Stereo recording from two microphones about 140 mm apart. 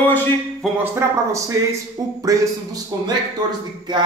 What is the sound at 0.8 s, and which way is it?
Speech, 20° right (ahead or behind).